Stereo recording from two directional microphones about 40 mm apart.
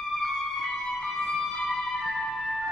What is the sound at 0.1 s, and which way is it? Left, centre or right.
Music, centre.